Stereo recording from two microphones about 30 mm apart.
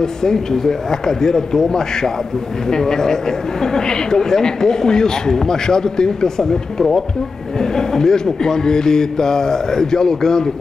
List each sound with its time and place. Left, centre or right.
0.0 s a man's voice: centre
7.6 s a man's voice: centre